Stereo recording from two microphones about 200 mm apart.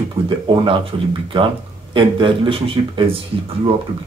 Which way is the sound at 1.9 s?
25° right (ahead or behind).